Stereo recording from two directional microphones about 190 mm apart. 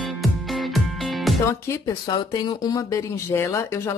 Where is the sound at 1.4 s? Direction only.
15° left (ahead or behind).